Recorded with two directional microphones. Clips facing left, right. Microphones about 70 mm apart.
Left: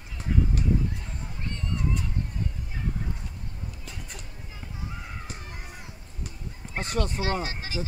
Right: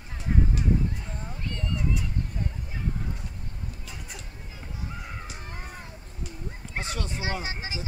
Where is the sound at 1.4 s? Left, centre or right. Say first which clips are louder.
Even; left.